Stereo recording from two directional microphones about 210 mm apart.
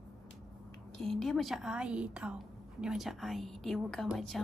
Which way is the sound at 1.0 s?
Centre (ahead or behind).